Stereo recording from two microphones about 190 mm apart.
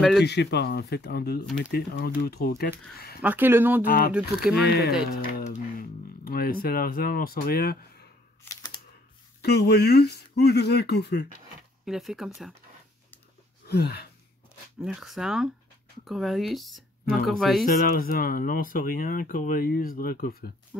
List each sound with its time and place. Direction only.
0.2 s speech: 65° left (ahead or behind)
3.2 s speech: 10° right (ahead or behind)
4.6 s speech: 55° left (ahead or behind)
8.5 s a sound: 25° left (ahead or behind)
9.4 s speech: 60° left (ahead or behind)
11.8 s speech: centre (ahead or behind)
13.7 s speech: 60° left (ahead or behind)
14.8 s speech: 5° right (ahead or behind)
17.6 s speech: 50° left (ahead or behind)